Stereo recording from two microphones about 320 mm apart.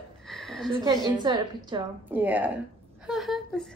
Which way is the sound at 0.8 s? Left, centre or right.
Centre.